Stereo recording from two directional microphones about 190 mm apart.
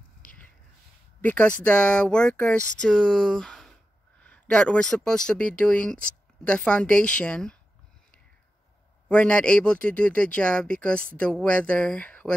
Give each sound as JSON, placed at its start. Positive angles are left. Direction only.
{"t": 1.2, "sound": "speech", "side_deg": 10}
{"t": 9.1, "sound": "speech", "side_deg": 5}